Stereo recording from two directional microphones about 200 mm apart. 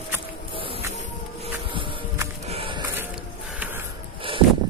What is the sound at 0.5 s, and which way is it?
Music, 25° right (ahead or behind).